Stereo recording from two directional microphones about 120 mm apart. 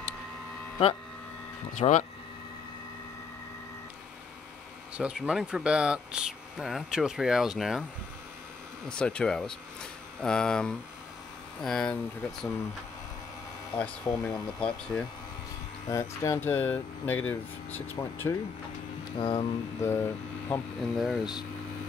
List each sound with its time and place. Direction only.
1.8 s speech: 80° left
4.9 s speech: 10° right (ahead or behind)
8.8 s speech: 10° left (ahead or behind)
14.0 s speech: 30° left (ahead or behind)
14.6 s speech: 10° left (ahead or behind)
15.9 s speech: 25° left (ahead or behind)
19.1 s speech: 45° left (ahead or behind)
19.8 s speech: 20° left (ahead or behind)
20.8 s speech: centre (ahead or behind)